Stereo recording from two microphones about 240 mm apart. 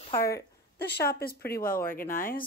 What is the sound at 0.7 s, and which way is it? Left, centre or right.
Speech, left.